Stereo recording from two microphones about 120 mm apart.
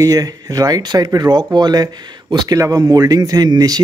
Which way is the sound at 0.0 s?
30° right (ahead or behind).